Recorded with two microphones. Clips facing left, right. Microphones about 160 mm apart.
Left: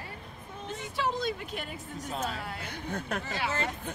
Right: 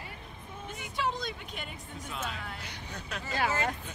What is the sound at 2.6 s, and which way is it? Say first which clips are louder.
Speech: left 7 dB; 55° left (ahead or behind).